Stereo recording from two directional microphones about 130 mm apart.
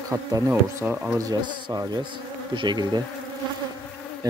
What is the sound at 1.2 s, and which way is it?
Insect, 30° right (ahead or behind).